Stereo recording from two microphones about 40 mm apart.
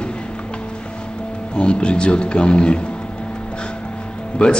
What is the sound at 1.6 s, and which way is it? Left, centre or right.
A man's voice, left.